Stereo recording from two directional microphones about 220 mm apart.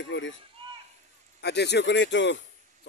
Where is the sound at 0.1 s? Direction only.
55° left (ahead or behind).